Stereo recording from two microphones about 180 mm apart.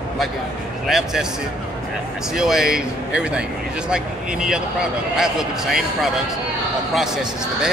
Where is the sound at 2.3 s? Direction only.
5° right (ahead or behind).